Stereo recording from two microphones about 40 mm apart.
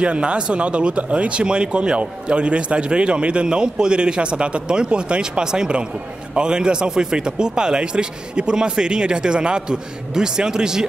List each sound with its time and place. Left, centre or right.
0.0 s speech: right